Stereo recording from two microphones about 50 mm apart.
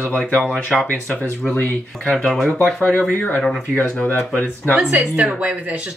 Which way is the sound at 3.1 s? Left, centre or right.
Left.